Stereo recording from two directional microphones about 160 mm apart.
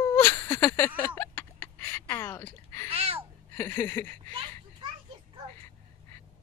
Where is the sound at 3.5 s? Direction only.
15° left (ahead or behind).